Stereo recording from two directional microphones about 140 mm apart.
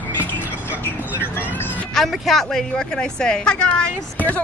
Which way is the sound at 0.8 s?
15° left (ahead or behind).